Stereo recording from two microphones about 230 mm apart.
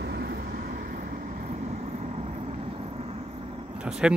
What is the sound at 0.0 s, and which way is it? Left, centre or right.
Vehicle, right.